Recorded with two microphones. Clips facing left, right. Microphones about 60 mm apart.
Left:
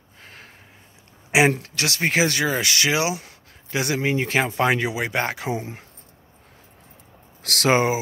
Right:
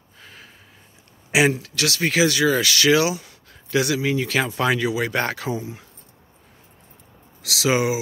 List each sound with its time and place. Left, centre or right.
1.6 s speech: left
5.6 s speech: left
7.4 s speech: left